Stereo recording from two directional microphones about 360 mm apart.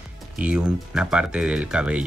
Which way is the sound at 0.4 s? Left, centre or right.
Centre.